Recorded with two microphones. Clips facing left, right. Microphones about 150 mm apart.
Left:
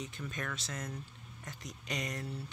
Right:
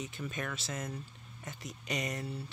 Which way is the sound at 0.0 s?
5° right (ahead or behind).